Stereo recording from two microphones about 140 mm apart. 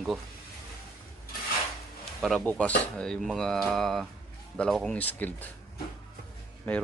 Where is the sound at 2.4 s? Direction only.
10° left (ahead or behind).